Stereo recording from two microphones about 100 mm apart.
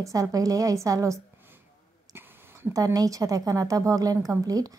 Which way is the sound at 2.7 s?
35° right (ahead or behind).